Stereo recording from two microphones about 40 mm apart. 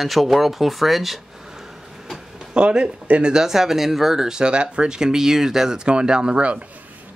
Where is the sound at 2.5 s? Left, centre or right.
Right.